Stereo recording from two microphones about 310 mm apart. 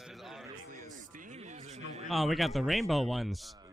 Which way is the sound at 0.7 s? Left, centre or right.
Right.